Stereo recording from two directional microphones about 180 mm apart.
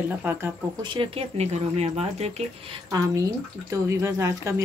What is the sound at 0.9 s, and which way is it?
Speech, 35° right (ahead or behind).